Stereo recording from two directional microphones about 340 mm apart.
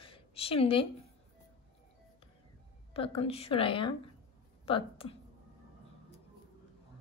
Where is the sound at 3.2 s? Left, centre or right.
Centre.